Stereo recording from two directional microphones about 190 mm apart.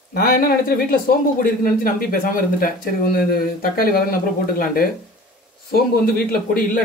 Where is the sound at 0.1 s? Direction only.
50° left (ahead or behind).